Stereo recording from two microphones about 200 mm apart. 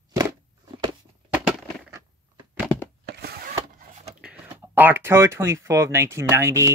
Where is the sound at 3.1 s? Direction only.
50° right (ahead or behind).